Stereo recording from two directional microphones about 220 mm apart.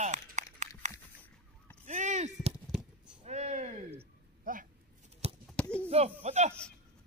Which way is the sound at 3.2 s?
30° right (ahead or behind).